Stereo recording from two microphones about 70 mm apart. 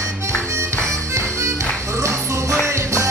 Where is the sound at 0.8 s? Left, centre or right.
Right.